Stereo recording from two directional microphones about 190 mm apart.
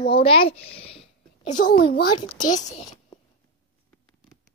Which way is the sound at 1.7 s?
55° left (ahead or behind).